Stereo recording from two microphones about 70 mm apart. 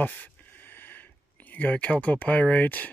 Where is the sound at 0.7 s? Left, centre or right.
Left.